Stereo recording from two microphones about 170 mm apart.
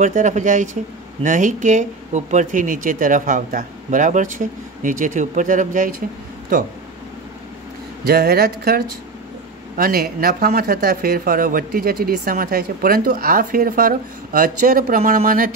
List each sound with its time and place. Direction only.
0.0 s speech: 45° right (ahead or behind)
8.0 s speech: 65° right (ahead or behind)